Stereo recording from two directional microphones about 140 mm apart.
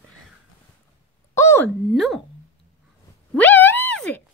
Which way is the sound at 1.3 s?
20° left (ahead or behind).